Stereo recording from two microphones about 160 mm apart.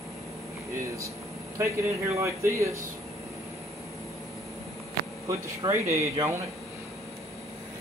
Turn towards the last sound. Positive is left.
turn(degrees=-20)  # may be behind; listen again after turning